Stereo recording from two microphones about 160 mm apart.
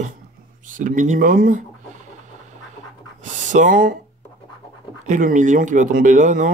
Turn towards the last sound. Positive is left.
turn(degrees=-55)  # may be behind; listen again after turning